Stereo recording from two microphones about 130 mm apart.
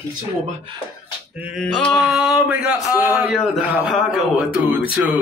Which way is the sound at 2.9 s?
10° right (ahead or behind).